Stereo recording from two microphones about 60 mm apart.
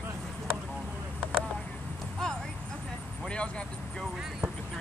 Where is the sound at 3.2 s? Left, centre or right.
Centre.